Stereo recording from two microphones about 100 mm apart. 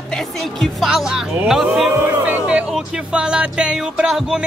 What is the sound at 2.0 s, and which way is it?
Speech, 20° right (ahead or behind).